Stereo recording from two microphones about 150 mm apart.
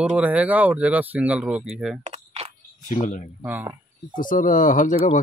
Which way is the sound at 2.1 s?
45° right (ahead or behind).